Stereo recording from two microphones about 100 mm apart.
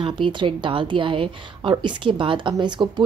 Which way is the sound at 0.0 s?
55° right (ahead or behind).